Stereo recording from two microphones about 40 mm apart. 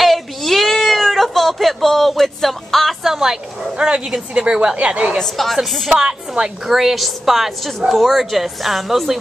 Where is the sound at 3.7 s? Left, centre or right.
Right.